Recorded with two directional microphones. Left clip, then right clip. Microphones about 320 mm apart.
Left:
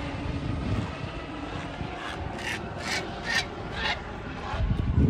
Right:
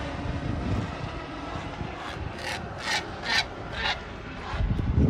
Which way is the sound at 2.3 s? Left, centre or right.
Right.